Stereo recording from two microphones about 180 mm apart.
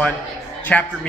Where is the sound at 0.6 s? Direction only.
10° left (ahead or behind).